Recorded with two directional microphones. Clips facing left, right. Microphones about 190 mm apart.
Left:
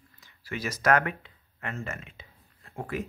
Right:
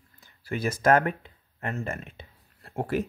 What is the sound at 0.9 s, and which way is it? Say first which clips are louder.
Speech: right 3 dB; 40° right (ahead or behind).